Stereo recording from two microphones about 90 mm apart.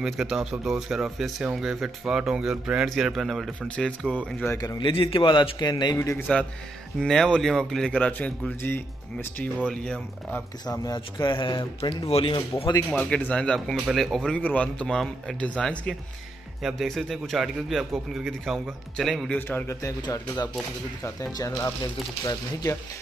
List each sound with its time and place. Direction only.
0.0 s speech: 5° right (ahead or behind)
3.6 s speech: 10° left (ahead or behind)
4.7 s speech: 70° left (ahead or behind); by 5.9 s 55° left (ahead or behind)
5.9 s speech: 35° left (ahead or behind)
7.0 s speech: 10° left (ahead or behind)
10.7 s speech: 50° left (ahead or behind)
13.0 s speech: 15° left (ahead or behind)
14.4 s speech: 15° left (ahead or behind)
19.3 s a man's voice: 20° left (ahead or behind)
20.0 s speech: 50° left (ahead or behind)
21.0 s speech: 35° left (ahead or behind)